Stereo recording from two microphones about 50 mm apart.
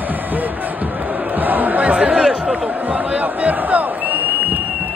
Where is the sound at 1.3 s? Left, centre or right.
Right.